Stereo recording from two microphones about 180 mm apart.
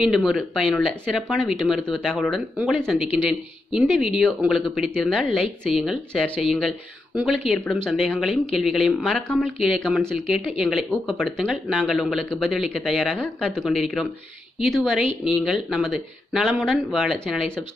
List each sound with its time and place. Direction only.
0.0 s speech: centre (ahead or behind)